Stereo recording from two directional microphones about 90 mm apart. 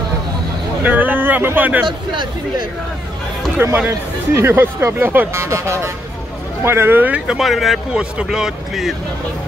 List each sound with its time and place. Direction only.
0.8 s speech: 20° right (ahead or behind)
3.5 s speech: 20° right (ahead or behind); by 8.9 s 5° right (ahead or behind)